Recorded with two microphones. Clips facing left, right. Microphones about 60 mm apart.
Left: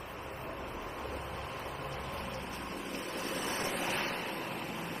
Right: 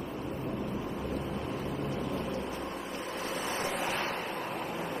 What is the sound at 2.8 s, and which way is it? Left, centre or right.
Waves, right.